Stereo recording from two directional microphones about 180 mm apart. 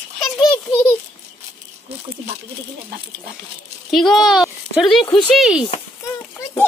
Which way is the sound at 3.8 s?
Centre (ahead or behind).